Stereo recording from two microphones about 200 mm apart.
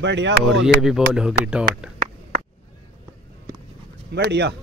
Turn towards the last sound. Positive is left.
turn(degrees=-60)  # may be behind; listen again after turning